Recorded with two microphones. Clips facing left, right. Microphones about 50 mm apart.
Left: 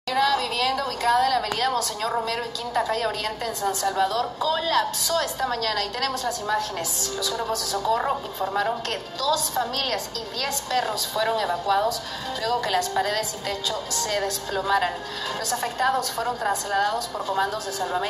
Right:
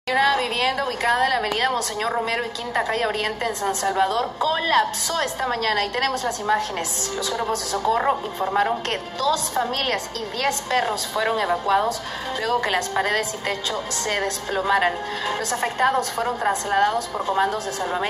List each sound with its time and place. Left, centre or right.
0.1 s a woman's voice: right